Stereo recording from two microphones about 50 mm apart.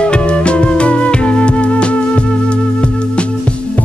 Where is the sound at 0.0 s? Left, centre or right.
Left.